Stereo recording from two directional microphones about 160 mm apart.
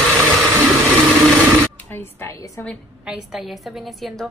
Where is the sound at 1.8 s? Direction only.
15° left (ahead or behind).